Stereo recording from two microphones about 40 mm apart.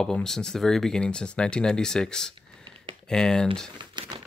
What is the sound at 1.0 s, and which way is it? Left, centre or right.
Speech, left.